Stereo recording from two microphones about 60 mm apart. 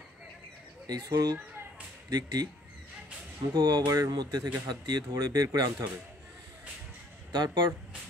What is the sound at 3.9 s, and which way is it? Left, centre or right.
Speech, right.